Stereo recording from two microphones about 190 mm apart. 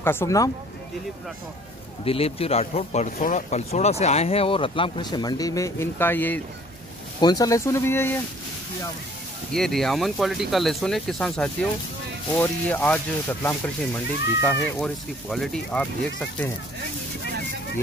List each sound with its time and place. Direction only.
0.0 s speech: 10° left (ahead or behind)
2.0 s speech: 30° left (ahead or behind); by 6.4 s 10° left (ahead or behind)
7.2 s speech: 20° left (ahead or behind)
9.5 s speech: centre (ahead or behind)